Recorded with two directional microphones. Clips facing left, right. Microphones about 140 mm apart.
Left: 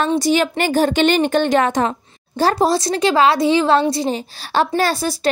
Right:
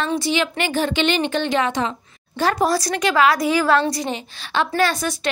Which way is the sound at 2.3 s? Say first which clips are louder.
Left 3 dB; 35° left (ahead or behind).